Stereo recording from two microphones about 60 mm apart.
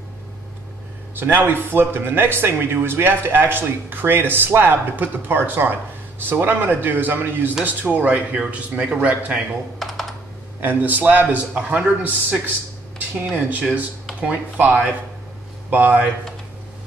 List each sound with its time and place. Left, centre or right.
1.1 s a man's voice: right
9.8 s computer keyboard: centre
10.6 s a man's voice: right
13.5 s a man's voice: right